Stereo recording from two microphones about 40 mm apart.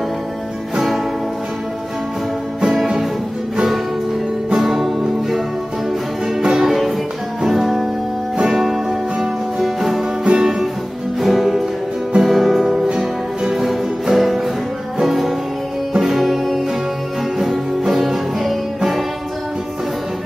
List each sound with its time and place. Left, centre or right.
0.7 s music: centre
2.7 s music: centre
4.6 s music: centre
6.5 s music: centre
10.2 s music: right
11.1 s music: centre
12.8 s music: centre
16.2 s music: centre